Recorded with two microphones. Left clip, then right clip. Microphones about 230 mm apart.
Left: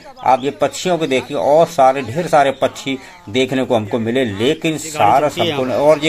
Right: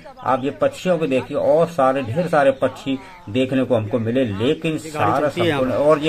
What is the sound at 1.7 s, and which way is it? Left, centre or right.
A man's voice, left.